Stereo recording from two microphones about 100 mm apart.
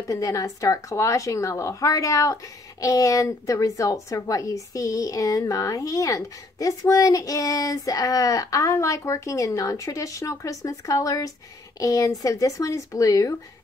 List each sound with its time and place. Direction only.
0.1 s speech: 35° left (ahead or behind)